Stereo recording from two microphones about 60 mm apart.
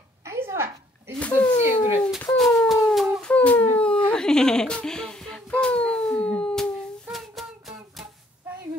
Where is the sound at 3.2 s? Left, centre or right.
Left.